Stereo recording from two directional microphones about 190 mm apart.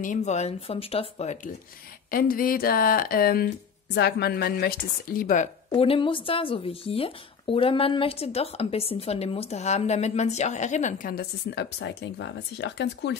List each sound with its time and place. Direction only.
0.0 s speech: 40° left (ahead or behind)
2.0 s speech: 50° left (ahead or behind)
5.7 s speech: 25° left (ahead or behind); by 13.1 s 65° left (ahead or behind)